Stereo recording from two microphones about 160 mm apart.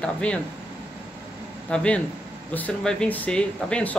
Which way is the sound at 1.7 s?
5° left (ahead or behind).